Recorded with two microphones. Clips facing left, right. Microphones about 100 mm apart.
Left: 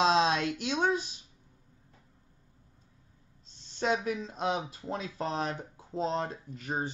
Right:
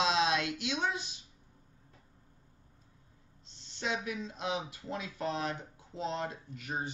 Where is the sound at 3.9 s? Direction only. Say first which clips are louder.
Left 5 dB; 35° left (ahead or behind).